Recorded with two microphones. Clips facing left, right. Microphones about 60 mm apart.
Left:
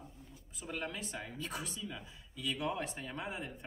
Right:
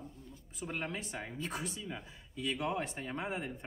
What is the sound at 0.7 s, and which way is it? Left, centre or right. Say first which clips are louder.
Speech: right 1 dB; right.